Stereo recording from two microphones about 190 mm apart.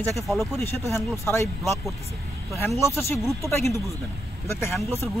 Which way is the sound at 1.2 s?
15° left (ahead or behind).